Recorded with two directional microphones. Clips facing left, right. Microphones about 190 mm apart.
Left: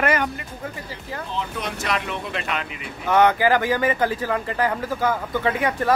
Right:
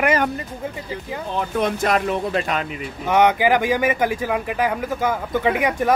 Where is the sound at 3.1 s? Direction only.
15° right (ahead or behind).